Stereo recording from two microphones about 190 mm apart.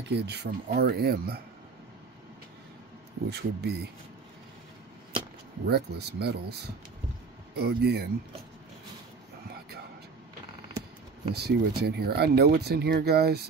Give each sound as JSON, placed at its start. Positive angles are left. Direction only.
{"t": 0.1, "sound": "speech", "side_deg": -60}
{"t": 3.3, "sound": "speech", "side_deg": -60}
{"t": 5.7, "sound": "speech", "side_deg": -60}
{"t": 11.3, "sound": "speech", "side_deg": -60}